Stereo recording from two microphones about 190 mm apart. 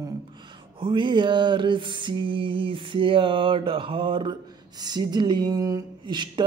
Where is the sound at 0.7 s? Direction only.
25° right (ahead or behind).